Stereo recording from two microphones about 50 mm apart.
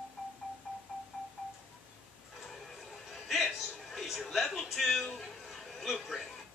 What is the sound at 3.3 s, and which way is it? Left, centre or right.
Music, centre.